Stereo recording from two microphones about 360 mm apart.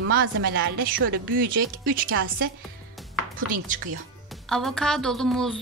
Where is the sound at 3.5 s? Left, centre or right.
Right.